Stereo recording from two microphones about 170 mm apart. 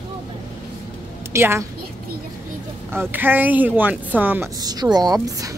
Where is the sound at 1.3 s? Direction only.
15° right (ahead or behind).